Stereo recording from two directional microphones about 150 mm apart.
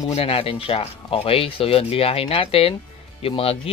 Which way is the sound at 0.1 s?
40° left (ahead or behind).